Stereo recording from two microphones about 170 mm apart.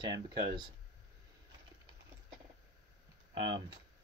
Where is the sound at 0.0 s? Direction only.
25° right (ahead or behind).